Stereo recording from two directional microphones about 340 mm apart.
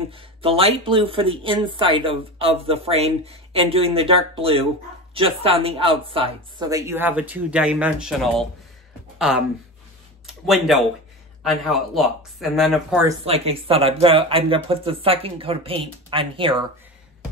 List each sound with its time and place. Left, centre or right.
0.1 s speech: centre
10.2 s speech: centre
13.2 s speech: centre